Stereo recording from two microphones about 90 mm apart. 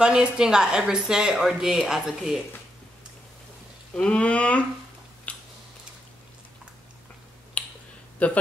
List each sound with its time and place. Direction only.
0.0 s speech: 10° right (ahead or behind)
3.9 s speech: 15° left (ahead or behind)
5.3 s a sound: 15° left (ahead or behind)
7.6 s finger snapping: 15° left (ahead or behind)
8.2 s speech: 15° left (ahead or behind)